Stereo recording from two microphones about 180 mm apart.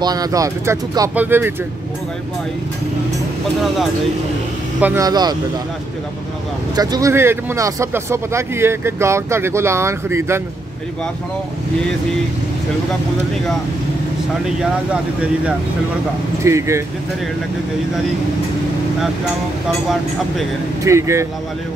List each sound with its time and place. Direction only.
0.0 s speech: 20° right (ahead or behind)
4.7 s speech: 10° right (ahead or behind)
5.0 s speech: 20° right (ahead or behind)
6.7 s speech: 20° right (ahead or behind)
16.4 s speech: 15° right (ahead or behind)
20.8 s speech: 15° right (ahead or behind)